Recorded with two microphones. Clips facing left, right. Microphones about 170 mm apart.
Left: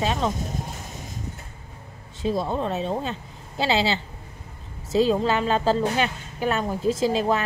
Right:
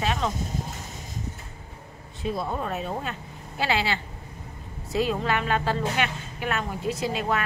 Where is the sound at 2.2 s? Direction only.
30° left (ahead or behind).